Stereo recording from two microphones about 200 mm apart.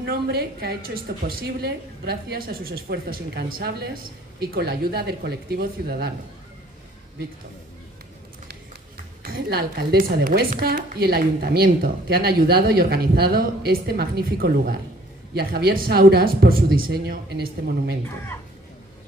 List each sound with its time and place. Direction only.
0.0 s a woman's voice: 50° right (ahead or behind)
9.2 s a woman's voice: 50° right (ahead or behind)